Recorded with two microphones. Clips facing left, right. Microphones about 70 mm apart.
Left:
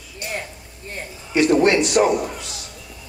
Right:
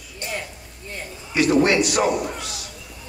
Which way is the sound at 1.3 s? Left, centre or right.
Left.